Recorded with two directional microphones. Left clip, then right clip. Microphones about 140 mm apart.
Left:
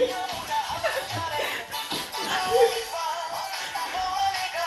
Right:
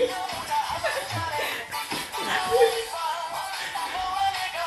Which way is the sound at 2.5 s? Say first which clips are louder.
Even; 25° left (ahead or behind).